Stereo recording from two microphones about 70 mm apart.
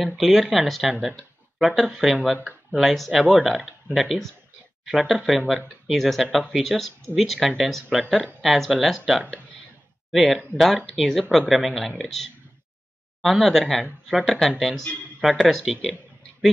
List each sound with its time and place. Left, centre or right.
0.0 s speech: centre